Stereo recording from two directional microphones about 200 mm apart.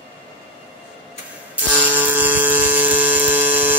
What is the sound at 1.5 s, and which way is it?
Music, 10° right (ahead or behind).